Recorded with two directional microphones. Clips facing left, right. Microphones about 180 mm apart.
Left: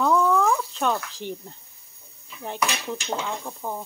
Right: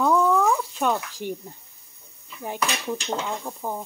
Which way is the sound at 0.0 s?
5° right (ahead or behind).